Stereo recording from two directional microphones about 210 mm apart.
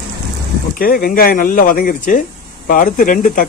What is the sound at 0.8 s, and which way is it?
Speech, 45° left (ahead or behind).